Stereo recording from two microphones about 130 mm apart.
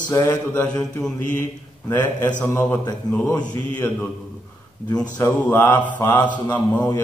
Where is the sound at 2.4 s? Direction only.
15° left (ahead or behind).